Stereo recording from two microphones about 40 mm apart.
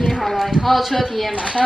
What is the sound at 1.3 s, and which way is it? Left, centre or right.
Speech, centre.